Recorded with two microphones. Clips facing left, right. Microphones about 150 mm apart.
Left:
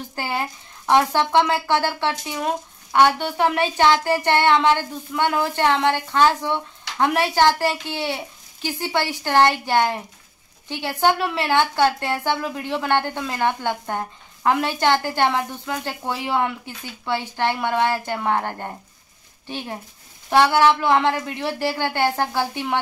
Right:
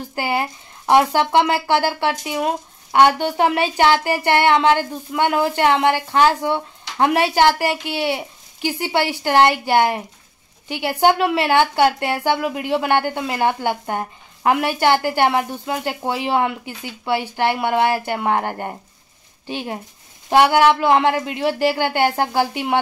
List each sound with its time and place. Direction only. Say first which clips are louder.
0.1 s speech: right 5 dB; 15° right (ahead or behind)